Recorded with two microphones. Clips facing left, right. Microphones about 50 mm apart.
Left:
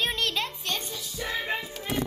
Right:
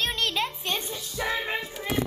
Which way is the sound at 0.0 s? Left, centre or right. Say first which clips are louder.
Right 1 dB; centre.